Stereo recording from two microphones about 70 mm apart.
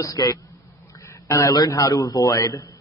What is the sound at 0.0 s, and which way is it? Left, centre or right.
A man's voice, left.